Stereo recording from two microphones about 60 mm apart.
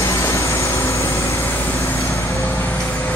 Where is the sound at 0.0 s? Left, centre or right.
Left.